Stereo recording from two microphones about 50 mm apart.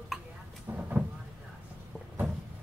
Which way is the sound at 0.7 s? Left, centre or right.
Right.